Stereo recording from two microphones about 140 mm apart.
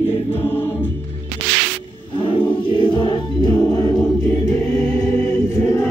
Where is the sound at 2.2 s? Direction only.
35° left (ahead or behind).